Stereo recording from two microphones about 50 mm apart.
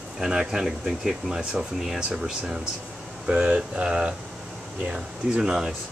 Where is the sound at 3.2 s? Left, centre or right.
Centre.